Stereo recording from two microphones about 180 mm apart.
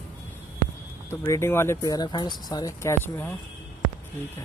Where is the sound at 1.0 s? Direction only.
15° left (ahead or behind).